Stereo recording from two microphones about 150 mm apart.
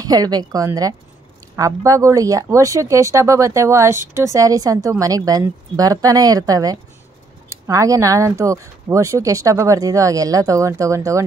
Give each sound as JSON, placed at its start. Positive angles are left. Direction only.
{"t": 0.0, "sound": "speech", "side_deg": -25}